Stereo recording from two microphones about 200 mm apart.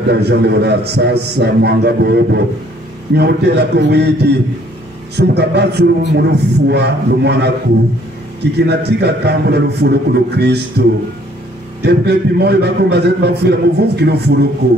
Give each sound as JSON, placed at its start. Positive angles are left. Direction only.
{"t": 0.1, "sound": "a man's voice", "side_deg": -55}
{"t": 8.5, "sound": "a man's voice", "side_deg": -55}